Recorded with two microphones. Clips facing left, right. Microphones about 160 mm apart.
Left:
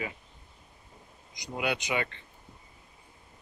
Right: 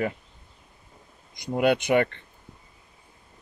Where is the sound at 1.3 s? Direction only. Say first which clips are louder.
Right 10 dB; 55° right (ahead or behind).